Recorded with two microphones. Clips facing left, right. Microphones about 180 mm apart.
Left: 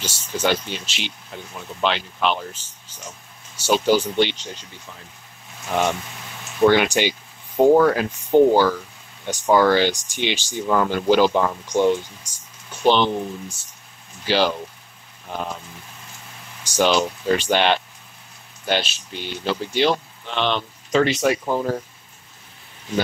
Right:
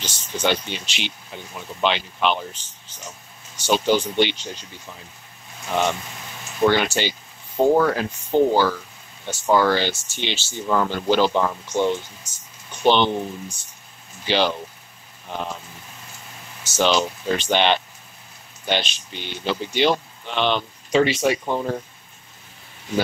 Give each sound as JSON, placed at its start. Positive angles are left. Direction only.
{"t": 0.0, "sound": "speech", "side_deg": 10}
{"t": 6.7, "sound": "speech", "side_deg": 10}
{"t": 12.8, "sound": "speech", "side_deg": 0}
{"t": 16.6, "sound": "speech", "side_deg": 10}